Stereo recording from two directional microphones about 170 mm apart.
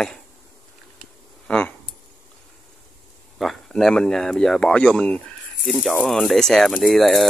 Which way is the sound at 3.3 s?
Centre (ahead or behind).